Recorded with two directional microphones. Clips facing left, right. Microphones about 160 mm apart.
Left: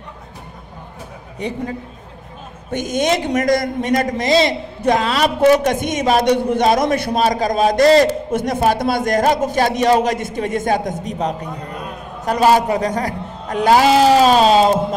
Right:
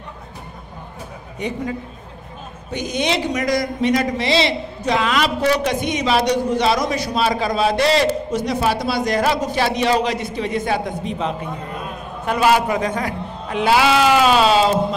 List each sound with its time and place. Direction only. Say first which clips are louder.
1.4 s a man's voice: left 1 dB; 35° left (ahead or behind)
2.7 s a man's voice: left 4 dB; 50° left (ahead or behind)